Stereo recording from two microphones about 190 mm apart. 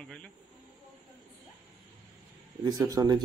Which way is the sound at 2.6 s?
20° right (ahead or behind).